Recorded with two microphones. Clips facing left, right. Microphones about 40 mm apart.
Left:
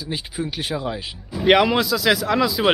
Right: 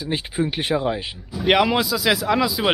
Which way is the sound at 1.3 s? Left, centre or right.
Centre.